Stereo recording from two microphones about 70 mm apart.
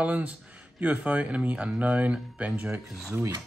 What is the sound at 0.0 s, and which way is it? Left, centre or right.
Speech, right.